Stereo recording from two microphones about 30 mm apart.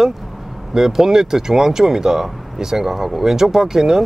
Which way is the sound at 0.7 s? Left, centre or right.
Centre.